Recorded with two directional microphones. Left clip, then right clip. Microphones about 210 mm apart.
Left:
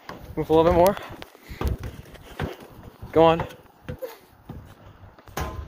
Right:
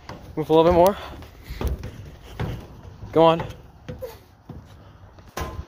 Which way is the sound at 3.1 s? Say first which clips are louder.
Right 1 dB; 25° right (ahead or behind).